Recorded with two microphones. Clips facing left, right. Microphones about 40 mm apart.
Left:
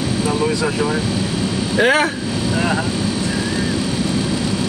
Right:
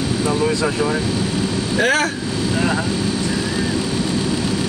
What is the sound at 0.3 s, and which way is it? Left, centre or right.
Speech, centre.